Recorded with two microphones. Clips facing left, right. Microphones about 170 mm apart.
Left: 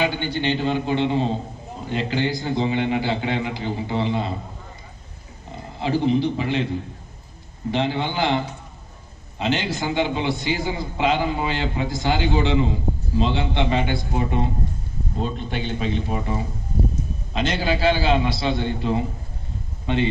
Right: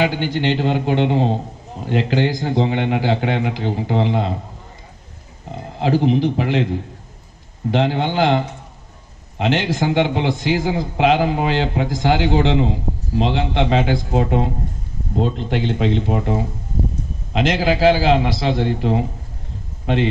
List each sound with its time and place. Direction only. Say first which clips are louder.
0.0 s a man's voice: right 4 dB; 90° right
5.5 s a man's voice: right 5 dB; 90° right
7.7 s a man's voice: right 5 dB; 90° right
17.3 s a man's voice: right 5 dB; 90° right